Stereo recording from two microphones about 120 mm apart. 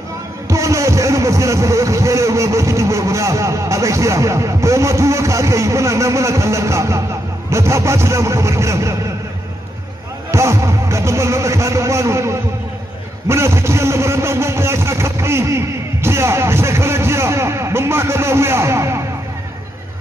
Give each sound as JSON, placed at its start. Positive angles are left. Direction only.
{"t": 0.5, "sound": "speech", "side_deg": -25}
{"t": 10.3, "sound": "speech", "side_deg": -25}